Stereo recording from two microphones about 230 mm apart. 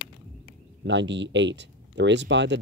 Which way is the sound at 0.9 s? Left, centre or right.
Right.